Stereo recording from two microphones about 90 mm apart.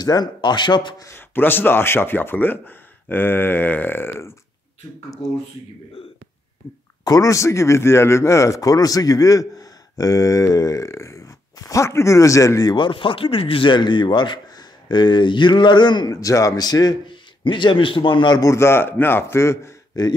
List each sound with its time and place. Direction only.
0.0 s a man's voice: 50° left (ahead or behind)
1.0 s speech: 25° left (ahead or behind)
5.2 s speech: 75° left (ahead or behind)
7.1 s speech: 40° left (ahead or behind)
12.7 s a man's voice: 65° left (ahead or behind)
16.1 s a man's voice: 40° left (ahead or behind); by 18.4 s 60° left (ahead or behind)
18.4 s speech: 30° left (ahead or behind)
19.9 s speech: 45° left (ahead or behind)